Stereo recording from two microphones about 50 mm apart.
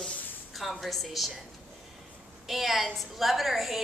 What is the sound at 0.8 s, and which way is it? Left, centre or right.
Speech, centre.